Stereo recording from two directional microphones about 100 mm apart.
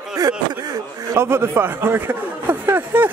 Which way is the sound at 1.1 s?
25° right (ahead or behind).